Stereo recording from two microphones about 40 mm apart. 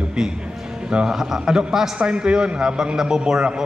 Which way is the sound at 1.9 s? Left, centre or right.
Right.